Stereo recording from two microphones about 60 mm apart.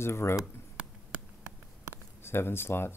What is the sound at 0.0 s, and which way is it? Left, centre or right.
Speech, left.